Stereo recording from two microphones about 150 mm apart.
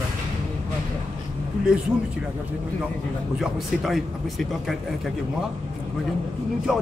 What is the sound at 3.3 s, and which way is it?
Speech, centre (ahead or behind).